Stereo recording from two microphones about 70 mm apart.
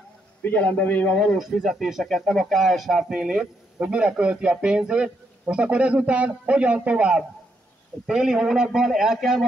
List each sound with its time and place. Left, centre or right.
0.4 s a man's voice: left
1.4 s speech: centre
3.1 s speech: centre